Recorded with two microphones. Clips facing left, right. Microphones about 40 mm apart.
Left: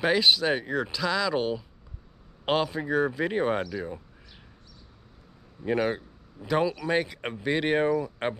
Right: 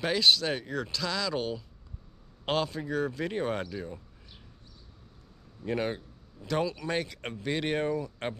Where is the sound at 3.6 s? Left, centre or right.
Centre.